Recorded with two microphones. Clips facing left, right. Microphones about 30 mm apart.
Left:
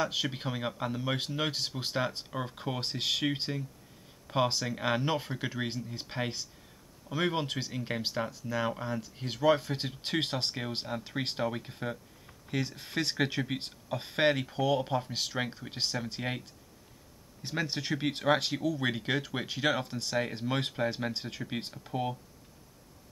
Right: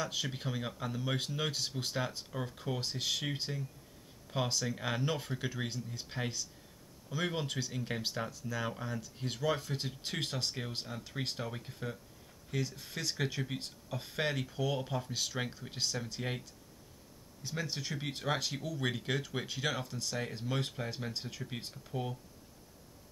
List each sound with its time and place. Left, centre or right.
0.0 s speech: left
7.9 s speech: centre; by 11.7 s left
12.4 s speech: left
14.5 s speech: left
17.4 s speech: left
18.8 s speech: left
19.9 s speech: left
21.8 s speech: left